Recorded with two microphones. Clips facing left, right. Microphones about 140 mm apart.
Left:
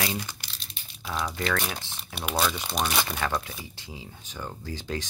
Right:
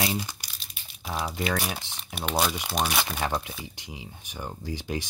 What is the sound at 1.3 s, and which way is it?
Speech, 10° right (ahead or behind).